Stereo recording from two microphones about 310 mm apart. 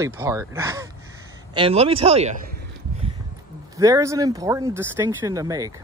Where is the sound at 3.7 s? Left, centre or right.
Centre.